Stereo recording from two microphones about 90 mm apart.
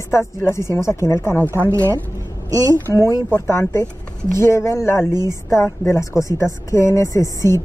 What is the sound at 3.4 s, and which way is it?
Speech, 30° left (ahead or behind).